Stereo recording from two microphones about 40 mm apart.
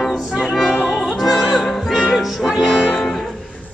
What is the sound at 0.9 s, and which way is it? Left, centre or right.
Opera, centre.